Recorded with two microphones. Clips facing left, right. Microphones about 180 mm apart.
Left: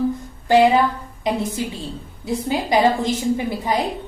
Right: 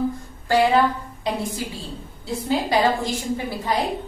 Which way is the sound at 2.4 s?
20° left (ahead or behind).